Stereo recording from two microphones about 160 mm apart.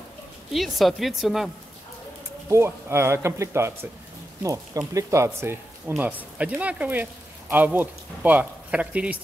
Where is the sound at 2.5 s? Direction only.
15° right (ahead or behind).